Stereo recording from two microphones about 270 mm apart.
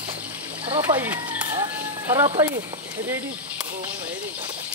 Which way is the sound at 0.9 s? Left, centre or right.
Centre.